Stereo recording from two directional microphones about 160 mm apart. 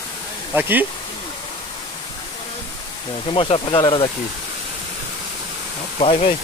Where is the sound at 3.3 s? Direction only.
35° left (ahead or behind).